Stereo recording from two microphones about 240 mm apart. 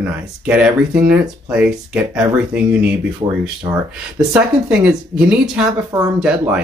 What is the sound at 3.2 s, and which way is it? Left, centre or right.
Speech, centre.